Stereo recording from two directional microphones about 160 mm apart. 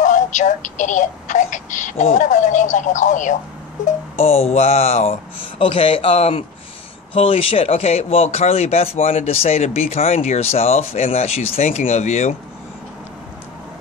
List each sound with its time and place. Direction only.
0.0 s speech: 50° left (ahead or behind)
3.8 s speech: 40° left (ahead or behind)